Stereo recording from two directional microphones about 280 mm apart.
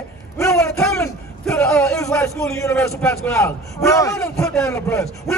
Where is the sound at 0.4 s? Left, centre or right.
Centre.